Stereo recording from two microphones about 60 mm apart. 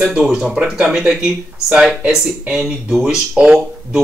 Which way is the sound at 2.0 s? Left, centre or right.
Centre.